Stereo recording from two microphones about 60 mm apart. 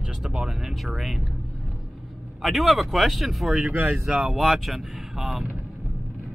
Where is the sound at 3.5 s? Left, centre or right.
Right.